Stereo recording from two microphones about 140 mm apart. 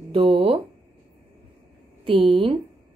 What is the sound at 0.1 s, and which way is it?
Speech, 40° right (ahead or behind).